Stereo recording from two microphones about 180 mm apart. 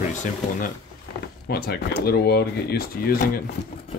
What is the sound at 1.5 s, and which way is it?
Speech, 60° left (ahead or behind).